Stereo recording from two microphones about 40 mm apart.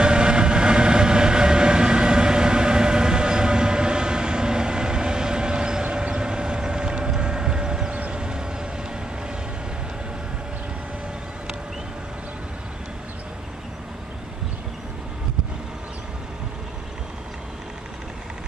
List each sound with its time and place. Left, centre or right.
0.0 s train: right
7.1 s vehicle: right